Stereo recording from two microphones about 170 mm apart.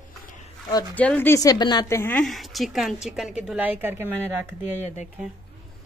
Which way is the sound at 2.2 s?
Centre (ahead or behind).